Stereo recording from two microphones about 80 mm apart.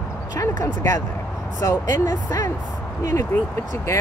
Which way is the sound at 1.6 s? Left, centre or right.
Left.